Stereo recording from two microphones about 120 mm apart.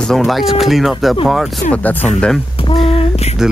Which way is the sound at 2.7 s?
50° left (ahead or behind).